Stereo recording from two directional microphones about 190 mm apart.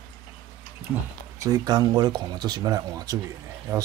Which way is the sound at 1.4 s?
20° right (ahead or behind).